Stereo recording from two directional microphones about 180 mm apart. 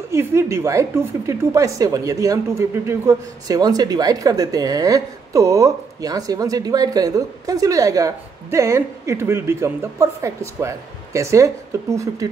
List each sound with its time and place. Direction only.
0.1 s a woman's voice: 15° right (ahead or behind)